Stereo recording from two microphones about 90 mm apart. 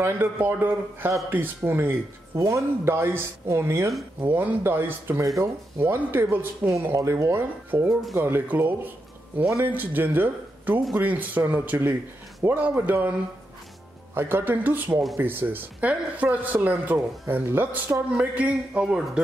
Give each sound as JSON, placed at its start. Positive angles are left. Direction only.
{"t": 0.0, "sound": "speech", "side_deg": -25}
{"t": 4.2, "sound": "speech", "side_deg": -20}
{"t": 7.9, "sound": "speech", "side_deg": 0}
{"t": 8.2, "sound": "a man's voice", "side_deg": -25}